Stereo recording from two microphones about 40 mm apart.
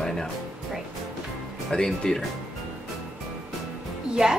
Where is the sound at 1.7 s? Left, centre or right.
Centre.